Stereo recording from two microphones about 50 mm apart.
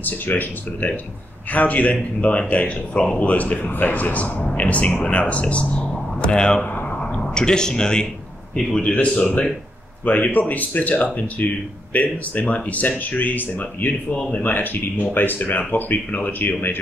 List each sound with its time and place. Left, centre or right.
0.0 s speech: left; by 6.6 s centre
6.6 s a sound: left
7.1 s speech: centre
10.0 s speech: left